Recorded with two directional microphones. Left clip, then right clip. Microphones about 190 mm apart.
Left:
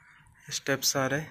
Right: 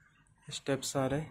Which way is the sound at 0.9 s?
5° right (ahead or behind).